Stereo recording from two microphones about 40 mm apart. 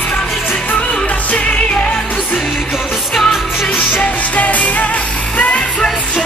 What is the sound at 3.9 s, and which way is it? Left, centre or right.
Music, left.